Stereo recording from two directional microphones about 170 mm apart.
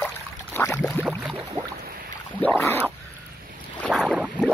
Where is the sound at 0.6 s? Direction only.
10° left (ahead or behind).